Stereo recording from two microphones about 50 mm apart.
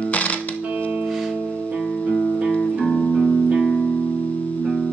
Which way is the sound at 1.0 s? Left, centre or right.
Centre.